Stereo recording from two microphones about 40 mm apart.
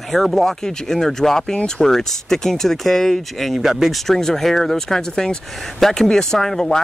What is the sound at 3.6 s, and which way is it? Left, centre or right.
Speech, centre.